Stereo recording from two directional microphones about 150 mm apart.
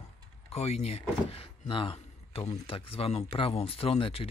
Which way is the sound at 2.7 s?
40° left (ahead or behind).